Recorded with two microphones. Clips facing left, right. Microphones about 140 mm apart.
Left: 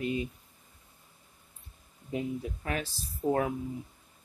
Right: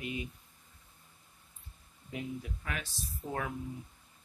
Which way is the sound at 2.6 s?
35° left (ahead or behind).